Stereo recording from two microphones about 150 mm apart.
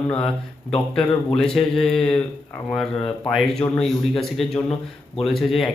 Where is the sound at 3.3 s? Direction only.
Centre (ahead or behind).